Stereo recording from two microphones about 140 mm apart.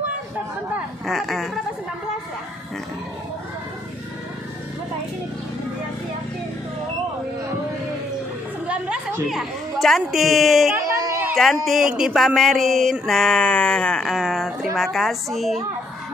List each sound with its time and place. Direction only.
0.7 s speech: 5° right (ahead or behind)
8.6 s a woman's voice: 5° right (ahead or behind)
10.8 s a sound: 20° right (ahead or behind)
11.3 s speech: centre (ahead or behind)